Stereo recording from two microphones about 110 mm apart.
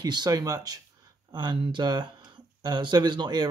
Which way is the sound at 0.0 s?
40° right (ahead or behind).